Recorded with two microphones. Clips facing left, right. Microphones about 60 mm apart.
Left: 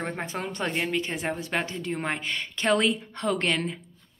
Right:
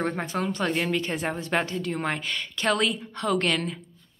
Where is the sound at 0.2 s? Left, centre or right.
Left.